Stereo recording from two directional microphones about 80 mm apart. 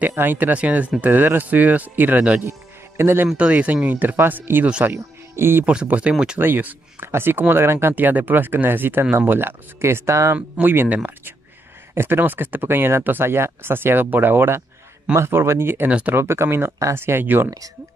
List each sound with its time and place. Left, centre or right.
0.1 s speech: right
3.3 s speech: centre
4.6 s speech: centre
4.9 s speech: right
5.7 s speech: centre
6.4 s speech: right
10.3 s speech: right
15.9 s speech: centre
16.2 s speech: right